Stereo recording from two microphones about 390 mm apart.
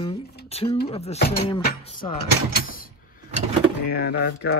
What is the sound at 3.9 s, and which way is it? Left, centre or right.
Speech, left.